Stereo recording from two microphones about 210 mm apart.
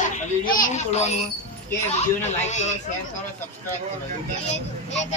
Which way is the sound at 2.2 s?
35° left (ahead or behind).